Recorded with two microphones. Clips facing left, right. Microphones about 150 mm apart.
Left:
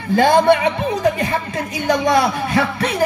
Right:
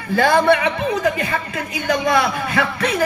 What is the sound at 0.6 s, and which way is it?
Speech, 35° left (ahead or behind).